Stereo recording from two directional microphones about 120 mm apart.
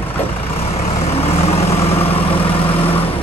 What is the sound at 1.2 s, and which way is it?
Vehicle, 55° left (ahead or behind).